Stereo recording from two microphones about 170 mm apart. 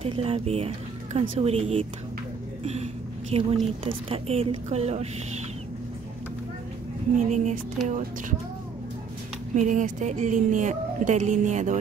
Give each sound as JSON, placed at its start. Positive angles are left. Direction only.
{"t": 0.0, "sound": "a woman's voice", "side_deg": -35}
{"t": 7.2, "sound": "speech", "side_deg": -45}
{"t": 9.6, "sound": "speech", "side_deg": -45}